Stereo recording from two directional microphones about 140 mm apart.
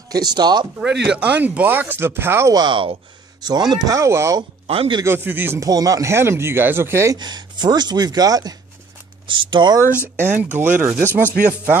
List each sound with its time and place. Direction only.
0.1 s speech: 30° right (ahead or behind)
0.7 s speech: 5° right (ahead or behind)
2.5 s speech: 35° right (ahead or behind)
4.6 s speech: 40° right (ahead or behind)
5.0 s speech: 15° right (ahead or behind)
7.2 s speech: 30° right (ahead or behind)
10.0 s speech: 15° right (ahead or behind)